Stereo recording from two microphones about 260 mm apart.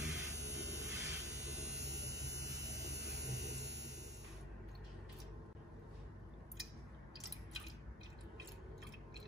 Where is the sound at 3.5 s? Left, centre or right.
Right.